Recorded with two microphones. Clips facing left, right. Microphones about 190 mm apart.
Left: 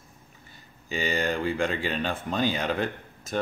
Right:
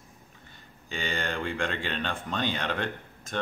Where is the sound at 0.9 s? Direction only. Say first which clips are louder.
Left 5 dB; 5° left (ahead or behind).